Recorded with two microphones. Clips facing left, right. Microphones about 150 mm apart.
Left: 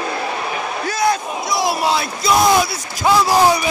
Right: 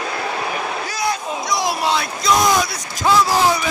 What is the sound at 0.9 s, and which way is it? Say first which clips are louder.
Battle cry: left 7 dB; 50° left (ahead or behind).